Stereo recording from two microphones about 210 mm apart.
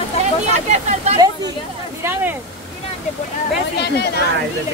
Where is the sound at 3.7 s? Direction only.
55° left (ahead or behind).